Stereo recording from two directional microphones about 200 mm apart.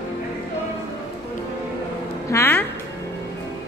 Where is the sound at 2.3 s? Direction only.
10° left (ahead or behind).